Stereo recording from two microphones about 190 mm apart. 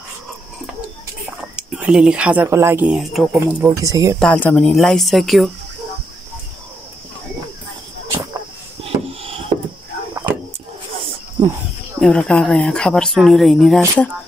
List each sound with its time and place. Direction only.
1.6 s speech: 5° right (ahead or behind)
4.2 s speech: 10° left (ahead or behind)
8.8 s wood: 30° right (ahead or behind)
11.4 s speech: 20° right (ahead or behind)
12.0 s speech: 5° left (ahead or behind)